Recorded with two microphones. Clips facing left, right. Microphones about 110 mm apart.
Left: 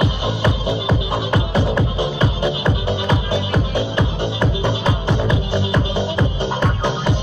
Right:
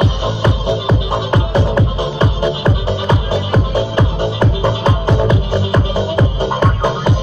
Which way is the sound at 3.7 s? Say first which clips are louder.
Right 4 dB; 35° right (ahead or behind).